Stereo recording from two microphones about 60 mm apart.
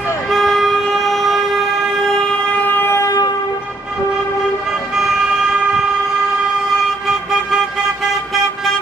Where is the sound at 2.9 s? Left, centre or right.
Left.